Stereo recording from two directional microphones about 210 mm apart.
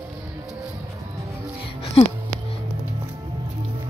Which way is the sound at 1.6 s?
30° left (ahead or behind).